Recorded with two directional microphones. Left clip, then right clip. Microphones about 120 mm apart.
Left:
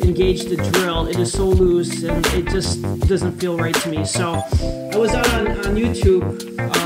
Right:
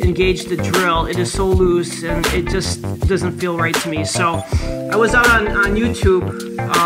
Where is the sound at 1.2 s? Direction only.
45° right (ahead or behind).